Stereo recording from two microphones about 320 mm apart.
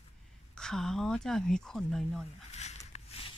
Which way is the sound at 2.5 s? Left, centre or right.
Centre.